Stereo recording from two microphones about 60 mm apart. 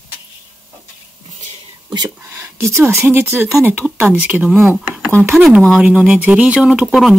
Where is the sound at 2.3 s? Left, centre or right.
Right.